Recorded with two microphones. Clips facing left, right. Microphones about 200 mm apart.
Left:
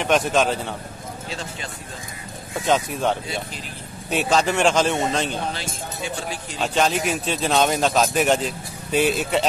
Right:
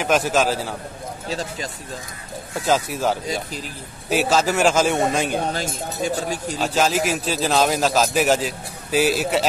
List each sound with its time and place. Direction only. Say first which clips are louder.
0.0 s a man's voice: even; 5° right (ahead or behind)
2.6 s a man's voice: even; 5° right (ahead or behind)
5.4 s speech: right 4 dB; 40° right (ahead or behind)
6.6 s a man's voice: even; 5° right (ahead or behind)